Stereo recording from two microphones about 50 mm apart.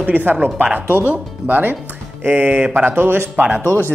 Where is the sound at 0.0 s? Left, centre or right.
Right.